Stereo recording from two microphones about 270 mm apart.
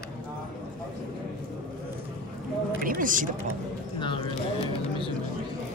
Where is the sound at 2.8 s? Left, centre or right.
Right.